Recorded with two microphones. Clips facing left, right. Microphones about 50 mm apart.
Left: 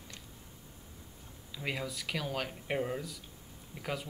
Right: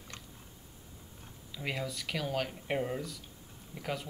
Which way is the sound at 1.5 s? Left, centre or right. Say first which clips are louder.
Even; centre.